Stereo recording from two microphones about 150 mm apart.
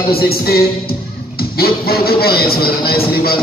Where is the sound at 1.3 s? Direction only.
90° left.